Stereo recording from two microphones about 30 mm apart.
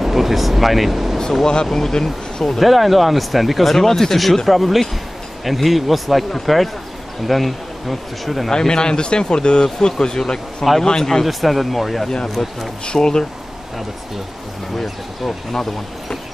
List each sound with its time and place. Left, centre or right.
0.0 s speech: centre
1.1 s speech: centre
2.6 s speech: centre
3.7 s speech: centre
8.5 s speech: left
11.2 s speech: centre
12.8 s speech: left
14.8 s speech: centre